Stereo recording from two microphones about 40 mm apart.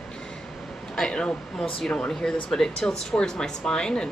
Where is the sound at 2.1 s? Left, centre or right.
Centre.